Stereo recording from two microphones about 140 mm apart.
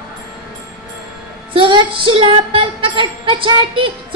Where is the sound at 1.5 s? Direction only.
35° right (ahead or behind).